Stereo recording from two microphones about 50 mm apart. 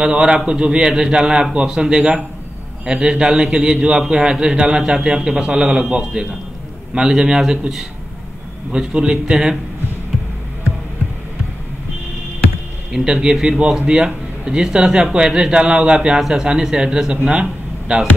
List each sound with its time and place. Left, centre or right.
0.0 s a man's voice: centre
12.9 s a man's voice: centre
16.2 s a man's voice: centre
17.3 s a sound: centre